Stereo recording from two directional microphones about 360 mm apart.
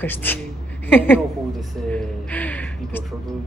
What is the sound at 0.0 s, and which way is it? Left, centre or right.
A woman's voice, centre.